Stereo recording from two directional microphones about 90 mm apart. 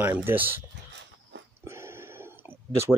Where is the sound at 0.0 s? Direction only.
20° right (ahead or behind).